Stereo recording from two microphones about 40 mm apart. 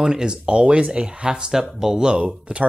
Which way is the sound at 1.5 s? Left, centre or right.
Centre.